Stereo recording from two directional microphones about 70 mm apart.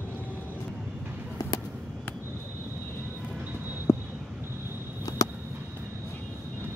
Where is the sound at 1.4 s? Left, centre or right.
Left.